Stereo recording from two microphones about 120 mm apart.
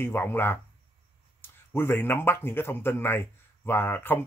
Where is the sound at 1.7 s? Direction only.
20° left (ahead or behind).